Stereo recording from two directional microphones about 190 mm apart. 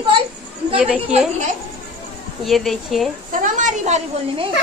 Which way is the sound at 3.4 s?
40° right (ahead or behind).